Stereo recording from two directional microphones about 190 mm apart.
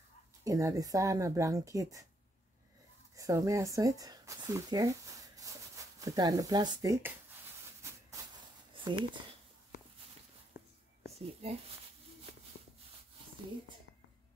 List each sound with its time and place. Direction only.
0.4 s speech: 15° right (ahead or behind)
3.2 s speech: 15° right (ahead or behind)
8.7 s speech: 25° right (ahead or behind)